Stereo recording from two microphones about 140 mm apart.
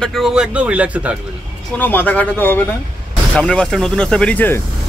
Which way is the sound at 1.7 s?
15° left (ahead or behind).